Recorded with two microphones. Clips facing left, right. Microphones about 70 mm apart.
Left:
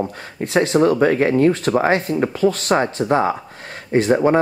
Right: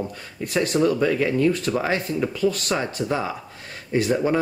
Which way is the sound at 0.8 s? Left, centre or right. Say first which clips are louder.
Left 5 dB; left.